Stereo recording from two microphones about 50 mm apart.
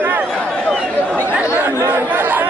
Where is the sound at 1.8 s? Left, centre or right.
Right.